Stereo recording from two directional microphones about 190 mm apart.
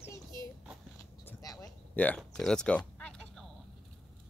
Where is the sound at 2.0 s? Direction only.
5° left (ahead or behind).